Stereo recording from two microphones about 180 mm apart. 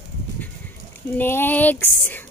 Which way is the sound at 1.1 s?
10° left (ahead or behind).